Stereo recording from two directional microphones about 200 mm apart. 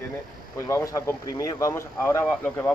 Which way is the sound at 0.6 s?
15° left (ahead or behind).